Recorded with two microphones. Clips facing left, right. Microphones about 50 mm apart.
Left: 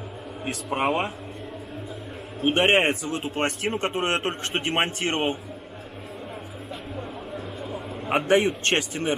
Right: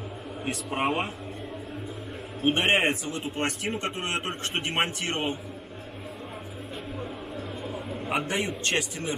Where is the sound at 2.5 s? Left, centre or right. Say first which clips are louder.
Left 3 dB; left.